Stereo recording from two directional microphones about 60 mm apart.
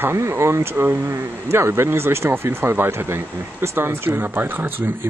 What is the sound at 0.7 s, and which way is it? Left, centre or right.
Speech, right.